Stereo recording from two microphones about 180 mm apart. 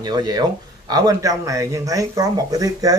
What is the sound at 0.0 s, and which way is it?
Speech, 20° right (ahead or behind).